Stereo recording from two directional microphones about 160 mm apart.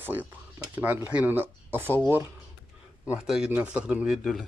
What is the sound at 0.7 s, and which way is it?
Speech, 10° right (ahead or behind).